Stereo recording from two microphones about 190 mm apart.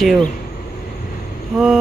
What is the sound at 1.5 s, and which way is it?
Speech, 5° right (ahead or behind).